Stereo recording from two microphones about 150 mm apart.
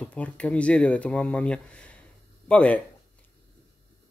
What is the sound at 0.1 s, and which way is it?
Speech, 10° left (ahead or behind).